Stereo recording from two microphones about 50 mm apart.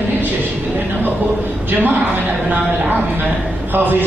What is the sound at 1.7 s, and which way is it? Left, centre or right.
Speech, right.